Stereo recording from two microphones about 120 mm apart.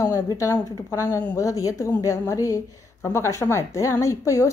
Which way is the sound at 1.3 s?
30° left (ahead or behind).